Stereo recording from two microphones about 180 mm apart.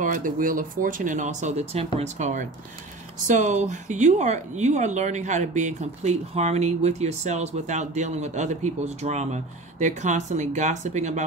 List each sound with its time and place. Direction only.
0.0 s a woman's voice: 45° right (ahead or behind)